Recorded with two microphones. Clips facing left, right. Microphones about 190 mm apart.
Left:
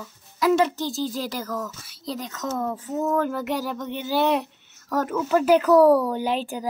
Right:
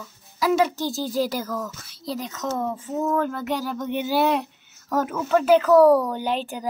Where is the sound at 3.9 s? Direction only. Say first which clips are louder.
Right 3 dB; 15° right (ahead or behind).